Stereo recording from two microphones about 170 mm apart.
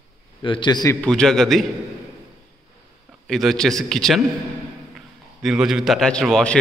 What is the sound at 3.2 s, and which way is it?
Speech, centre (ahead or behind).